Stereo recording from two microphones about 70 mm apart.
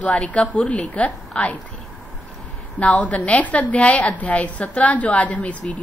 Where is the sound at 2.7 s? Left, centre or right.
Left.